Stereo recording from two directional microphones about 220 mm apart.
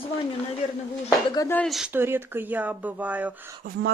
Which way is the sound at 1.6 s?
Centre (ahead or behind).